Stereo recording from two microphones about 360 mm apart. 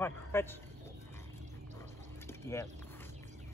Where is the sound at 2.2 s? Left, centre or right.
Centre.